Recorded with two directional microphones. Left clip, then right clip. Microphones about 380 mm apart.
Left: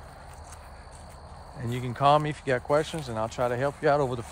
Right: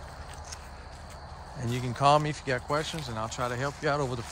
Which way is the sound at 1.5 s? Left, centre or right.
Centre.